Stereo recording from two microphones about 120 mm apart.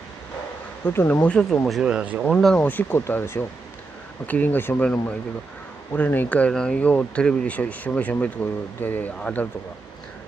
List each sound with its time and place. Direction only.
0.8 s speech: 15° left (ahead or behind)
1.8 s speech: 10° right (ahead or behind)
2.2 s speech: 5° left (ahead or behind)
2.6 s speech: 15° left (ahead or behind)